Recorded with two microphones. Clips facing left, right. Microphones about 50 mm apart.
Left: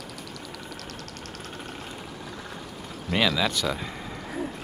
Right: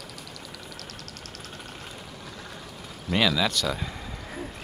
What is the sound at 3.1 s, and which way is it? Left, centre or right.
Speech, centre.